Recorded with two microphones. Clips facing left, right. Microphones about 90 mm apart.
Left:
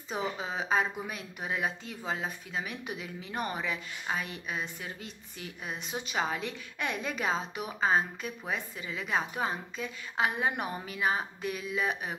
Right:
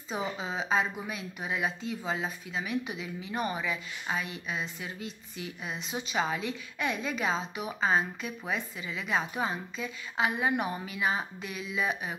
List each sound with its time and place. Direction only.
0.6 s speech: 50° left (ahead or behind)